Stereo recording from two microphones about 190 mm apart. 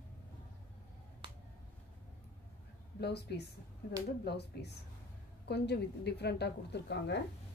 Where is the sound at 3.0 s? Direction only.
60° left (ahead or behind).